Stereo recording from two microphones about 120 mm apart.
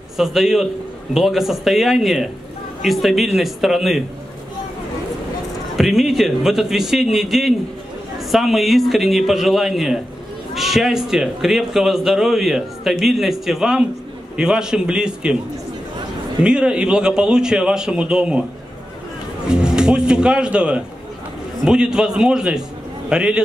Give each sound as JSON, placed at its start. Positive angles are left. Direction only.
{"t": 0.2, "sound": "speech", "side_deg": -5}
{"t": 5.8, "sound": "a man's voice", "side_deg": -5}
{"t": 16.4, "sound": "a man's voice", "side_deg": -5}
{"t": 19.4, "sound": "a man's voice", "side_deg": -5}